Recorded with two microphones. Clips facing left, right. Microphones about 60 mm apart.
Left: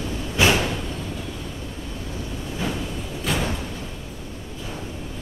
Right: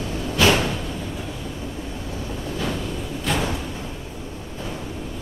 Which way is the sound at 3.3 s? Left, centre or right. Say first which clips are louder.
Right 1 dB; centre.